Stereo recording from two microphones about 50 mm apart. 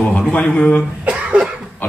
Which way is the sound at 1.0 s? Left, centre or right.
Right.